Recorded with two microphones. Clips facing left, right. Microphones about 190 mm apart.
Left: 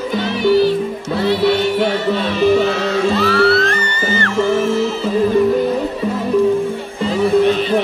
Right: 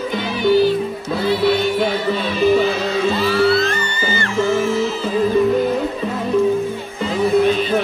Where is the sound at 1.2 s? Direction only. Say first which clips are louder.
Left 2 dB; 70° left (ahead or behind).